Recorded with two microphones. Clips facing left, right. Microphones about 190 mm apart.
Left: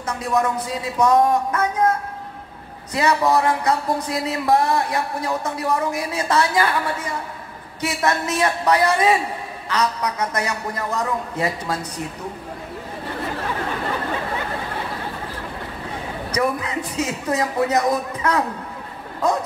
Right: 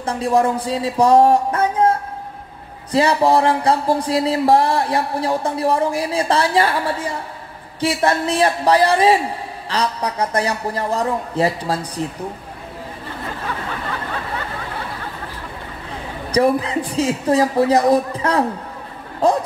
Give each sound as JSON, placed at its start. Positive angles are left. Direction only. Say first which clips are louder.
{"t": 0.0, "sound": "speech", "louder": "right 5 dB", "side_deg": -30}
{"t": 16.3, "sound": "speech", "louder": "right 7 dB", "side_deg": -30}